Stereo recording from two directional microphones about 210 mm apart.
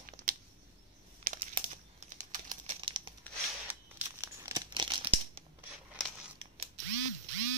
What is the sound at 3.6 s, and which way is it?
Crumpling, 10° right (ahead or behind).